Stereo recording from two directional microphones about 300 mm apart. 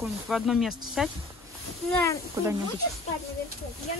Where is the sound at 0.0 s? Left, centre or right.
Centre.